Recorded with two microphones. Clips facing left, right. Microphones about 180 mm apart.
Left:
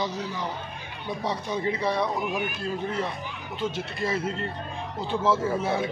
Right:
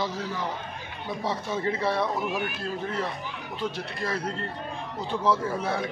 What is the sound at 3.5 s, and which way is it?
A man's voice, 25° left (ahead or behind).